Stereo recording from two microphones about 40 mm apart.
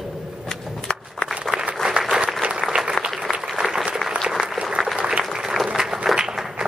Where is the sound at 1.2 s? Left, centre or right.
Centre.